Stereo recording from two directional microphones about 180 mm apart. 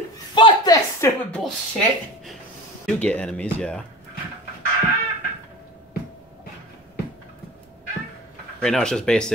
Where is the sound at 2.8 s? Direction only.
5° left (ahead or behind).